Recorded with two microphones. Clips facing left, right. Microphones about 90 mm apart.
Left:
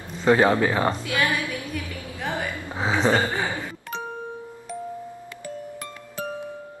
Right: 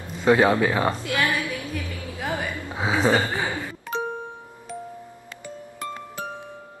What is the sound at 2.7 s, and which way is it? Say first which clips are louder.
Speech: even; 10° right (ahead or behind).